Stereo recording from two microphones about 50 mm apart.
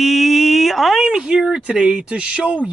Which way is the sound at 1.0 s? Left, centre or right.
Centre.